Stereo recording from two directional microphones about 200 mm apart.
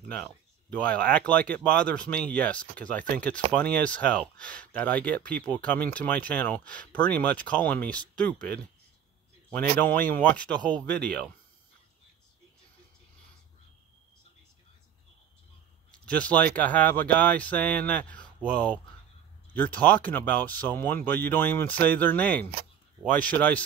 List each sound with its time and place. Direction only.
0.1 s speech: 5° left (ahead or behind)
15.9 s speech: 5° left (ahead or behind)
19.5 s speech: 10° left (ahead or behind)